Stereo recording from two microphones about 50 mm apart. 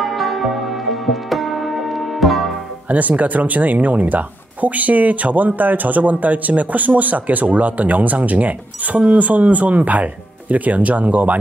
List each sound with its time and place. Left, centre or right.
0.0 s music: centre
2.9 s speech: right